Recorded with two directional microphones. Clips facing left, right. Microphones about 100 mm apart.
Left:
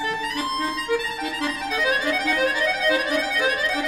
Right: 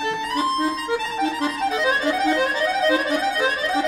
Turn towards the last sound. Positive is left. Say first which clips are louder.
# right 2 dB
turn(degrees=-30)  # may be behind; listen again after turning